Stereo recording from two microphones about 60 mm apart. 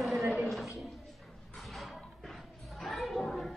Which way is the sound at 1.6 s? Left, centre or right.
Centre.